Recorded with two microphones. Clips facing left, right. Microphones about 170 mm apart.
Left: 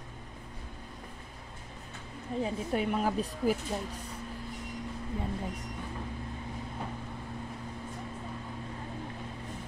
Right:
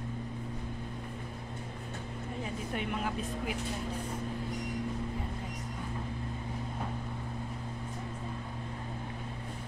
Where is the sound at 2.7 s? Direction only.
40° left (ahead or behind).